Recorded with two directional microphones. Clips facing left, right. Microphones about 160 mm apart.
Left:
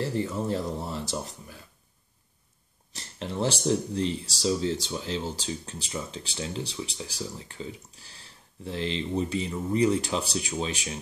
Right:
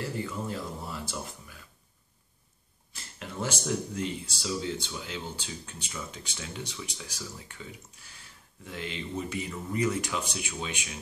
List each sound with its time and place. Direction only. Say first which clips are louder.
0.0 s speech: left 5 dB; 35° left (ahead or behind)
3.0 s a sound: left 6 dB; 30° left (ahead or behind)
3.6 s speech: left 5 dB; 30° left (ahead or behind)